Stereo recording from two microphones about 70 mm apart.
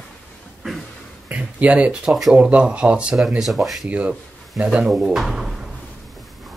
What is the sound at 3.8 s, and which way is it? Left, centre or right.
Speech, centre.